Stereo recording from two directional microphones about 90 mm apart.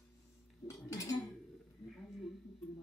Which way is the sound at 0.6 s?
35° left (ahead or behind).